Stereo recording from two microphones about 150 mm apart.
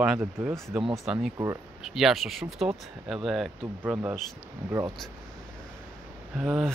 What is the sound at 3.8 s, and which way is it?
Speech, 10° right (ahead or behind).